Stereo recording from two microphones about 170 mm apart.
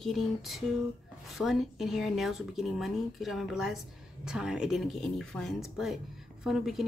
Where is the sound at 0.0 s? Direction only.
Centre (ahead or behind).